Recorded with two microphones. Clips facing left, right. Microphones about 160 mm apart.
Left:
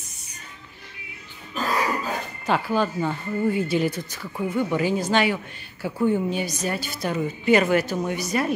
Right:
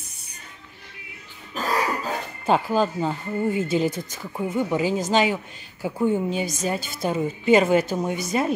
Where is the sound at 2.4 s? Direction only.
25° right (ahead or behind).